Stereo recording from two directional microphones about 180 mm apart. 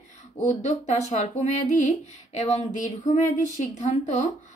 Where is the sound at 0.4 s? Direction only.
40° left (ahead or behind).